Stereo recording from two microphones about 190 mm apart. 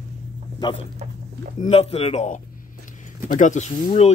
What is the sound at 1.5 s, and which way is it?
Speech, 30° left (ahead or behind).